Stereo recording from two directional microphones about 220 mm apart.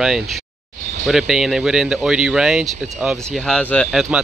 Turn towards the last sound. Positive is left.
turn(degrees=0)  # may be behind; listen again after turning